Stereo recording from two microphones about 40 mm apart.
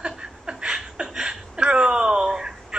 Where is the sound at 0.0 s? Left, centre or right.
Right.